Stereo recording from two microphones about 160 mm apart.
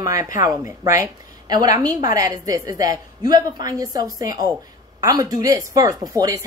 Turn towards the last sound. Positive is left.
turn(degrees=-20)  # may be behind; listen again after turning